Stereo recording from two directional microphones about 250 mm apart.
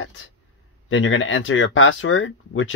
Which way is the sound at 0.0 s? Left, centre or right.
Left.